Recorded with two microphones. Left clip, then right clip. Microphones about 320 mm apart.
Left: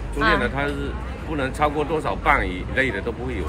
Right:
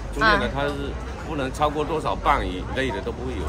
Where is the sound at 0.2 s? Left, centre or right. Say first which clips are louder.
Even; centre.